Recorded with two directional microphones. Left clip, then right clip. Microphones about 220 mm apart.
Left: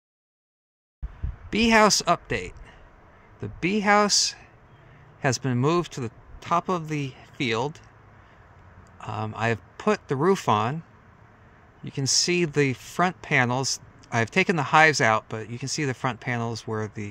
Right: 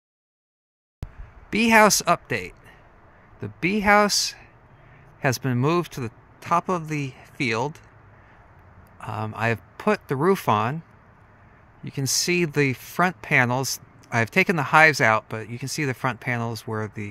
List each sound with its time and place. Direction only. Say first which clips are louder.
1.5 s speech: right 2 dB; 5° right (ahead or behind)
8.9 s speech: right 1 dB; 5° right (ahead or behind)
11.8 s speech: left 1 dB; 5° right (ahead or behind)